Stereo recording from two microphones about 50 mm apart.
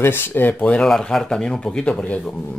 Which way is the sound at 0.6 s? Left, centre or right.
Left.